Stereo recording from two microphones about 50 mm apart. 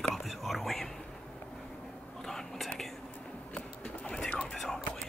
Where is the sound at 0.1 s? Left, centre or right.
Centre.